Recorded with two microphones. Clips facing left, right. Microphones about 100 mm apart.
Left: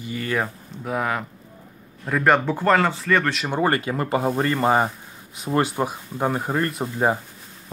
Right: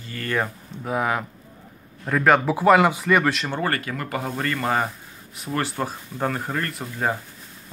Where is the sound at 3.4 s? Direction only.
15° left (ahead or behind).